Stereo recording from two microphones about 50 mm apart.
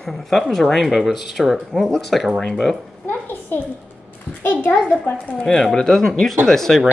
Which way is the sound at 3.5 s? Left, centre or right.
Left.